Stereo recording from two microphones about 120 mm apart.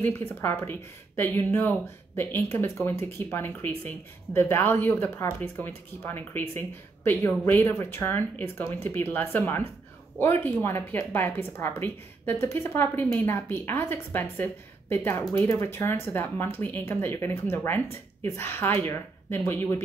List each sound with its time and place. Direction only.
0.3 s speech: 20° left (ahead or behind)